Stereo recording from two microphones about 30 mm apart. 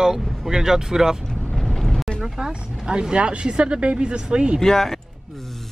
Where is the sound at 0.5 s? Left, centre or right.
Centre.